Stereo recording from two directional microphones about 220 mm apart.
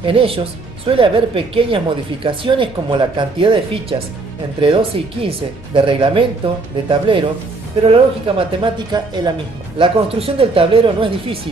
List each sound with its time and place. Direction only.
0.0 s speech: 25° right (ahead or behind)